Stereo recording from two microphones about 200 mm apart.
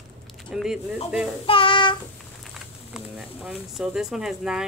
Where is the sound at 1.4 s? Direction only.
25° left (ahead or behind).